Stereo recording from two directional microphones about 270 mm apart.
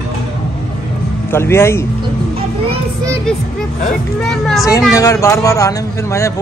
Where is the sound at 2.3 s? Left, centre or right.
Right.